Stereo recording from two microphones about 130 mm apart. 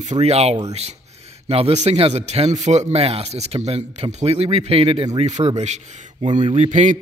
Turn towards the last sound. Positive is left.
turn(degrees=-65)  # may be behind; listen again after turning